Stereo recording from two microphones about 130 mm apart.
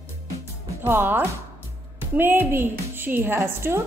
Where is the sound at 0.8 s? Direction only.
15° right (ahead or behind).